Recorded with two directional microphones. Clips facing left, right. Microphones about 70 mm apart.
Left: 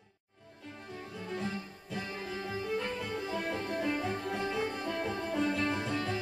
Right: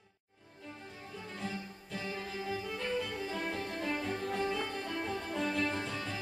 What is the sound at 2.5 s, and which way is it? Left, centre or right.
Music, centre.